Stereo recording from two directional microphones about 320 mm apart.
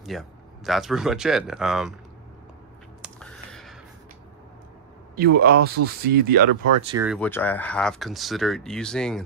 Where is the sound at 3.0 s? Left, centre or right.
Centre.